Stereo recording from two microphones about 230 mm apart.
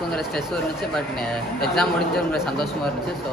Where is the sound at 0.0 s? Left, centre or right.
Centre.